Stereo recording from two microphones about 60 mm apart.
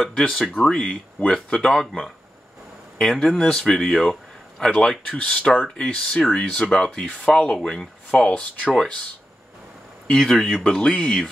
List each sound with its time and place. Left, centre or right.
0.0 s speech: centre
10.1 s speech: centre